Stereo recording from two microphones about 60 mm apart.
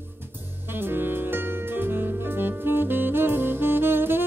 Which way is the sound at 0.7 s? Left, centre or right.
Right.